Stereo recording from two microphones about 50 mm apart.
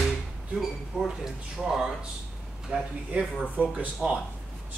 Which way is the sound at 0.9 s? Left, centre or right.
Centre.